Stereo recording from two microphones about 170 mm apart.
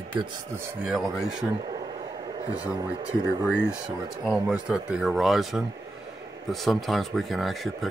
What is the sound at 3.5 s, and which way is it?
Speech, 5° right (ahead or behind).